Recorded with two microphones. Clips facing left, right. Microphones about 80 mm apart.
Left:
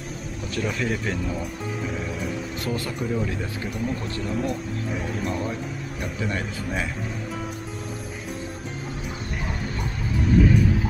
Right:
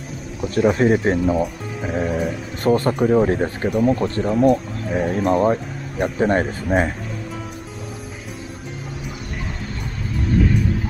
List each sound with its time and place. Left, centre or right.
0.6 s speech: right